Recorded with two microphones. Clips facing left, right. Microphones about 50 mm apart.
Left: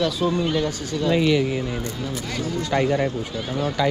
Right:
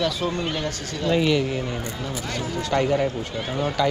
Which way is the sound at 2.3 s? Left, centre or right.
Centre.